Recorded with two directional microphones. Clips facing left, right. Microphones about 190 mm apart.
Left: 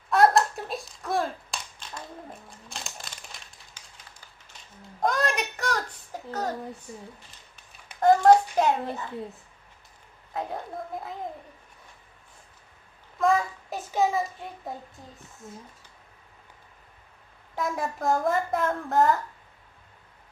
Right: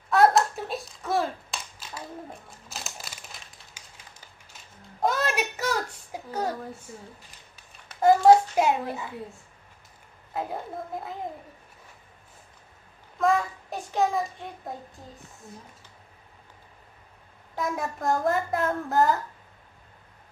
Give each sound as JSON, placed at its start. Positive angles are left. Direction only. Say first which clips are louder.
{"t": 0.1, "sound": "clapping", "louder": "even", "side_deg": 0}
{"t": 2.7, "sound": "a sound", "louder": "right 1 dB", "side_deg": -5}
{"t": 5.0, "sound": "a sound", "louder": "even", "side_deg": -5}
{"t": 8.0, "sound": "hands", "louder": "right 1 dB", "side_deg": -5}
{"t": 10.3, "sound": "a woman's voice", "louder": "right 1 dB", "side_deg": -5}
{"t": 13.2, "sound": "a child's voice", "louder": "even", "side_deg": 0}
{"t": 17.6, "sound": "a woman's voice", "louder": "even", "side_deg": 0}